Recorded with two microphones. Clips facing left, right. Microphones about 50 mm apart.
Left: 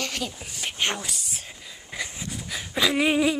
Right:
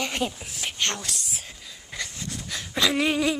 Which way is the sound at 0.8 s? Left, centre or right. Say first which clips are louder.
Left 2 dB; centre.